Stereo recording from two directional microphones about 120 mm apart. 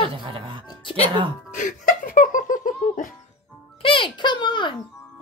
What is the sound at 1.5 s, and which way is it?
Music, 90° left.